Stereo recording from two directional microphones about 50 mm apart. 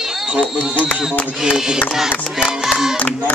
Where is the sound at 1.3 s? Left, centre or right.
Centre.